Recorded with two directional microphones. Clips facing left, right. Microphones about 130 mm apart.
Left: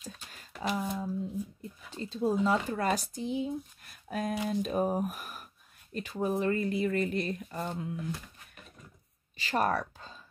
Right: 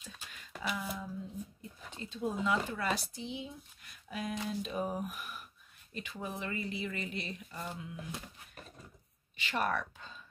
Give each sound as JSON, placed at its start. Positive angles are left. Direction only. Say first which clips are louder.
{"t": 0.0, "sound": "speech", "louder": "left 4 dB", "side_deg": 40}
{"t": 9.4, "sound": "speech", "louder": "left 5 dB", "side_deg": 40}